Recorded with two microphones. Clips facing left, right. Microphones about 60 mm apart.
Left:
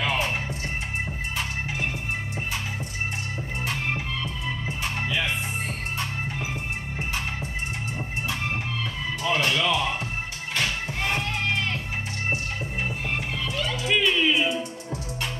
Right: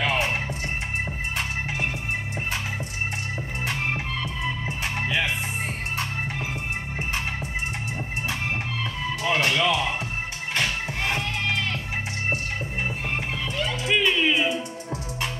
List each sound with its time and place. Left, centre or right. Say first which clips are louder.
0.1 s music: right 1 dB; right
3.6 s music: right 1 dB; right
9.2 s music: right 1 dB; right
13.6 s music: right 1 dB; centre